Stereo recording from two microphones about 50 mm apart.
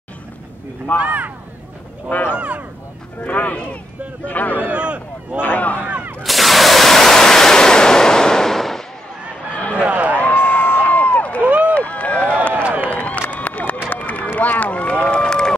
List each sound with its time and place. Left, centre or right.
0.9 s speech: right
2.0 s speech: left
2.3 s speech: right
3.2 s speech: left
4.6 s speech: right
5.4 s speech: left
5.9 s gunshot: right
6.2 s a sound: centre
9.5 s a sound: left
9.8 s run: right
10.2 s a sound: left
11.4 s run: right
11.7 s run: left
14.3 s a sound: left; by 15.5 s centre